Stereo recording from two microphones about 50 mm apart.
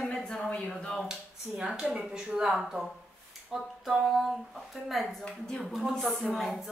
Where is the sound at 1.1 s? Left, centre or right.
Centre.